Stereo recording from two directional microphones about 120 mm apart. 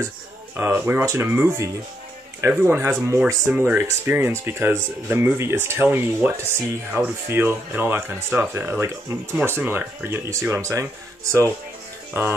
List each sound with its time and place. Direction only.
0.6 s speech: 15° right (ahead or behind)
12.1 s music: 15° right (ahead or behind)